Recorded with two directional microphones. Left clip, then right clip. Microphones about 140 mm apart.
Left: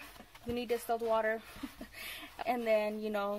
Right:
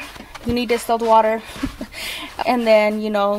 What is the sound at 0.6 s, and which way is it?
Speech, 10° right (ahead or behind).